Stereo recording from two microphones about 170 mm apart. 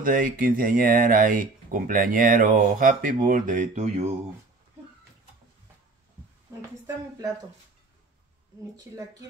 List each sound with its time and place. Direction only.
0.0 s speech: 55° right (ahead or behind)